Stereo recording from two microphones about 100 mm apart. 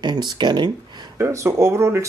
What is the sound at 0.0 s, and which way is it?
Speech, 45° right (ahead or behind).